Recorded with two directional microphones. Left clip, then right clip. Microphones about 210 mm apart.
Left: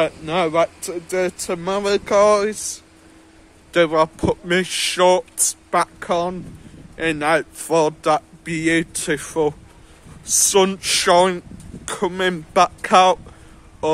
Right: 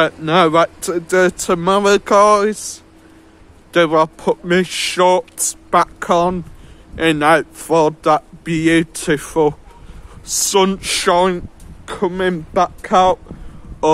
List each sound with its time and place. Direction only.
0.0 s speech: 25° right (ahead or behind); by 13.2 s 5° left (ahead or behind)